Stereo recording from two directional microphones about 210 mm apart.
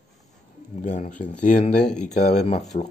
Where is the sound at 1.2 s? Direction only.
35° left (ahead or behind).